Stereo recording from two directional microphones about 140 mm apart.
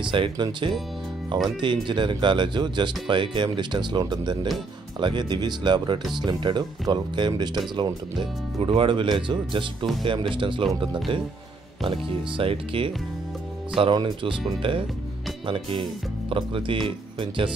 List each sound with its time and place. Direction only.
0.0 s speech: 35° right (ahead or behind)
11.8 s speech: 40° right (ahead or behind)